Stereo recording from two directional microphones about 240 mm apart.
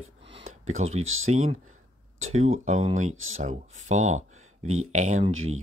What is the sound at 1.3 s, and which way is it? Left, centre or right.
Speech, right.